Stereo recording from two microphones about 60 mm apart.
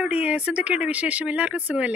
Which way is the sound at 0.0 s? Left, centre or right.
Centre.